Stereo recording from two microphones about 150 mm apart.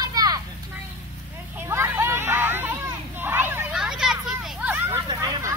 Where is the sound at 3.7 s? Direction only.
5° right (ahead or behind); by 5.5 s 25° right (ahead or behind).